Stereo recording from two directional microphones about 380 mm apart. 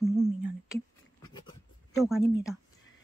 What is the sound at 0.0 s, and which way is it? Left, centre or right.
Humming, centre.